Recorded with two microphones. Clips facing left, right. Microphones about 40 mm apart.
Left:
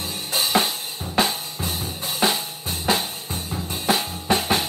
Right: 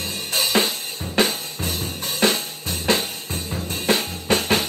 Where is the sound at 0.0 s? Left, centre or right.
Right.